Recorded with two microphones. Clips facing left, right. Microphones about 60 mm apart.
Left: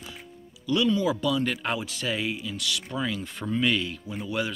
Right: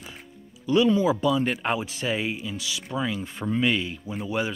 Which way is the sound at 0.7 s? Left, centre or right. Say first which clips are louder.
Right 4 dB; right.